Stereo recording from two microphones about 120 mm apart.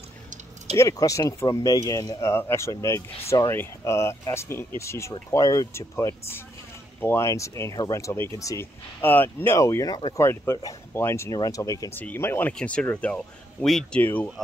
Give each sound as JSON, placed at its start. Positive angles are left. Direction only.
{"t": 0.7, "sound": "speech", "side_deg": 25}
{"t": 12.0, "sound": "speech", "side_deg": 15}